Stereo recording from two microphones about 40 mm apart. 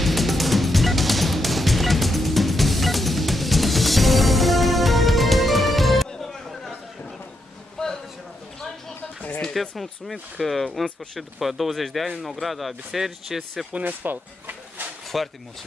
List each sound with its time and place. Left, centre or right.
0.0 s music: centre
9.5 s speech: centre
13.8 s speech: right
15.1 s speech: centre